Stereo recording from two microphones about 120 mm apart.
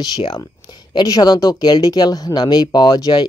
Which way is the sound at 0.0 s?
35° left (ahead or behind).